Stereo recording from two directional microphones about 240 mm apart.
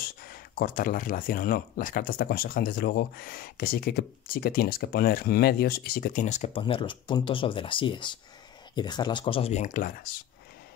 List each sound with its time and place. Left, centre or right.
0.0 s speech: left